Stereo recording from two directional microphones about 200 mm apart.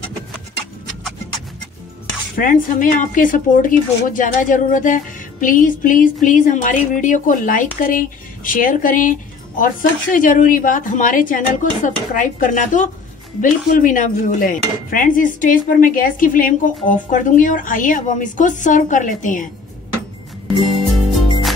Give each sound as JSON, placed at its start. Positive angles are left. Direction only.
{"t": 2.3, "sound": "speech", "side_deg": 45}
{"t": 20.6, "sound": "music", "side_deg": 0}